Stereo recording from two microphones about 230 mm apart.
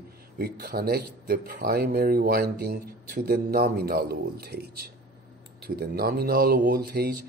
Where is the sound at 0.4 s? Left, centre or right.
Right.